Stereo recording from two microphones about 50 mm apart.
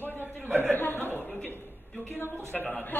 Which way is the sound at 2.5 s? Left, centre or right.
Left.